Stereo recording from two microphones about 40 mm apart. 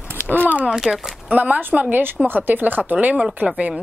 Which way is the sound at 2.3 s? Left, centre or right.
Right.